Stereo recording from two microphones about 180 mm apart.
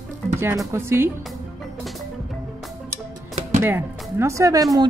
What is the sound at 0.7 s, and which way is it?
Speech, 15° right (ahead or behind).